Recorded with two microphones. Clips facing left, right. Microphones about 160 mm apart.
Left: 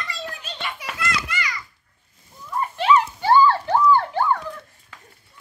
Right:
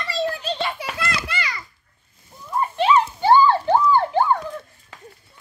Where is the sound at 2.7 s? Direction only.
25° right (ahead or behind).